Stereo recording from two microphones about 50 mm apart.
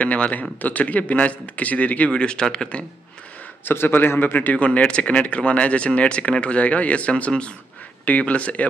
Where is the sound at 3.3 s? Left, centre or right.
Left.